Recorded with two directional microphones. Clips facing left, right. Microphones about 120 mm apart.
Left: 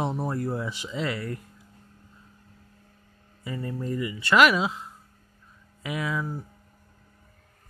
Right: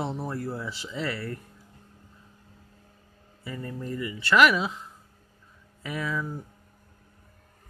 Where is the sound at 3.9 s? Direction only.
15° left (ahead or behind).